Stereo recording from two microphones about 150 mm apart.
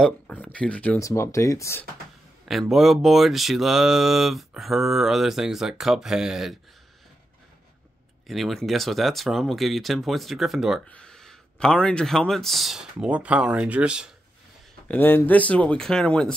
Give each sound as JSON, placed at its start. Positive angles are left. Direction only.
{"t": 0.0, "sound": "speech", "side_deg": 10}
{"t": 0.9, "sound": "speech", "side_deg": 20}
{"t": 2.4, "sound": "speech", "side_deg": 0}
{"t": 8.3, "sound": "speech", "side_deg": 0}
{"t": 14.9, "sound": "speech", "side_deg": 15}